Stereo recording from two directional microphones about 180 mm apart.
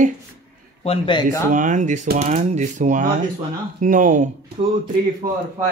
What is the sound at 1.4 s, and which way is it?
Speech, 45° right (ahead or behind).